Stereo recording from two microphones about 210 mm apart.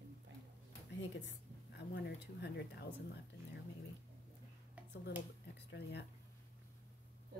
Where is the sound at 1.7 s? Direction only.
55° left (ahead or behind).